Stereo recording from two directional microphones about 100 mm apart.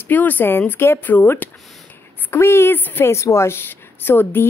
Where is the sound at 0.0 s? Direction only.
20° left (ahead or behind).